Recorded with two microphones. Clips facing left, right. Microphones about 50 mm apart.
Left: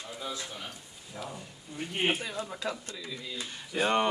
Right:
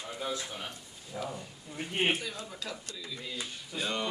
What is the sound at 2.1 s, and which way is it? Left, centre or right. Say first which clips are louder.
Speech: left 2 dB; left.